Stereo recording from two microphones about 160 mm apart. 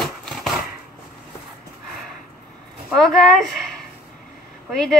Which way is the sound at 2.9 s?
5° left (ahead or behind).